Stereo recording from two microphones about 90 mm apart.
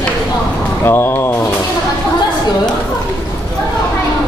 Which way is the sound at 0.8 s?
25° left (ahead or behind).